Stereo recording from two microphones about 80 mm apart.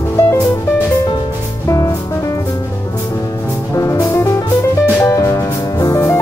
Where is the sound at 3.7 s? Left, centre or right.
Left.